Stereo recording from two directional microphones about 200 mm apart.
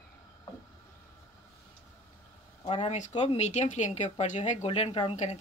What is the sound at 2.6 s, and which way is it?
Speech, 25° left (ahead or behind).